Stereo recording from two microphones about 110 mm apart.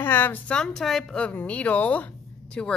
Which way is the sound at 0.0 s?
20° left (ahead or behind).